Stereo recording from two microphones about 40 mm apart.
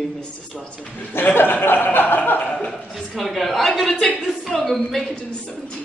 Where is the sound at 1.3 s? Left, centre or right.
Left.